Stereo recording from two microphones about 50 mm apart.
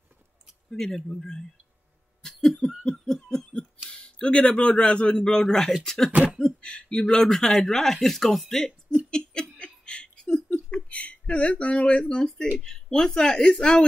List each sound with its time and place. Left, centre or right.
0.7 s speech: centre
2.2 s a sound: centre
2.8 s snicker: centre
3.3 s a sound: centre
3.9 s a man's voice: centre
6.4 s speech: centre
9.1 s laughter: centre
9.8 s a sound: centre
10.7 s speech: left